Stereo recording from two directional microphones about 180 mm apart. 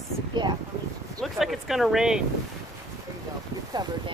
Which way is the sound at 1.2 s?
Centre (ahead or behind).